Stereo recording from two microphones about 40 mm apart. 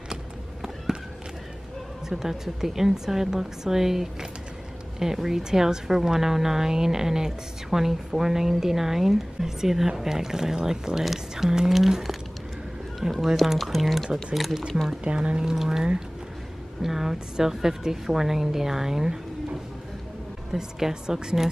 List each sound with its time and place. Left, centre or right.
2.0 s a woman's voice: centre
13.0 s a woman's voice: centre
13.6 s a woman's voice: centre
15.0 s speech: right
15.5 s a woman's voice: centre
20.5 s a woman's voice: centre